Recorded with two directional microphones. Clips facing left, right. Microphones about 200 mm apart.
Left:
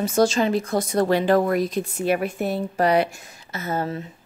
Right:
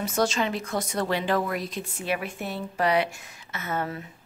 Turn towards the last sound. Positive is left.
turn(degrees=30)  # may be behind; listen again after turning